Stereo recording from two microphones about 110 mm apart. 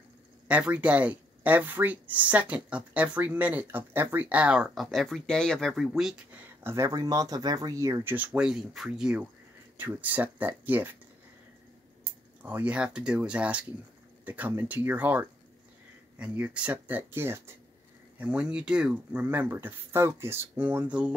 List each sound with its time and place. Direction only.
0.5 s speech: 10° right (ahead or behind)
6.3 s speech: 20° right (ahead or behind)
8.0 s speech: 15° right (ahead or behind)
12.4 s speech: 15° right (ahead or behind)
19.2 s speech: 20° right (ahead or behind)